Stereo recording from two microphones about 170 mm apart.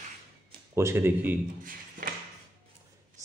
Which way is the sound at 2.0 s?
50° right (ahead or behind).